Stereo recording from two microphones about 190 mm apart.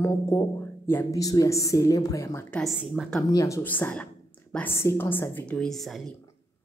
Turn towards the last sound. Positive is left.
turn(degrees=0)  # may be behind; listen again after turning